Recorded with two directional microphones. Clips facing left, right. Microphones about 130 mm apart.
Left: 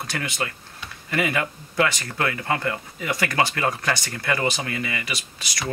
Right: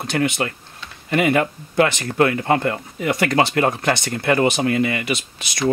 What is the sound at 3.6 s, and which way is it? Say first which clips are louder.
Speech: right 6 dB; 45° right (ahead or behind).